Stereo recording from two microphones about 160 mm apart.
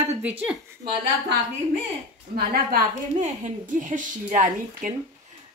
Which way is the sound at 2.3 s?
70° right (ahead or behind).